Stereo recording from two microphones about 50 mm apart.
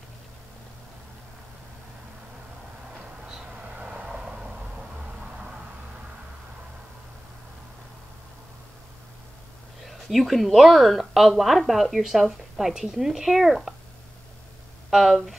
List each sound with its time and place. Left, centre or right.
3.5 s vehicle: right
9.8 s a woman's voice: centre
14.9 s speech: centre